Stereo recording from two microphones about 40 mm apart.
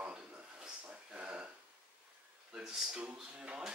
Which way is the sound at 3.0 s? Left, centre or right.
Right.